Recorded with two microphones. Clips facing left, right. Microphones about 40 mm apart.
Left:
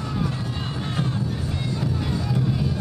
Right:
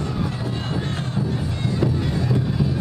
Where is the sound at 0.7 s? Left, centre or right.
Centre.